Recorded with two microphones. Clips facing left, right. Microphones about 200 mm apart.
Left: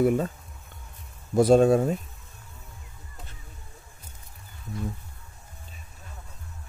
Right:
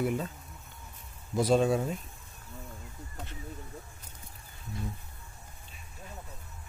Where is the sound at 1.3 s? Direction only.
50° left (ahead or behind).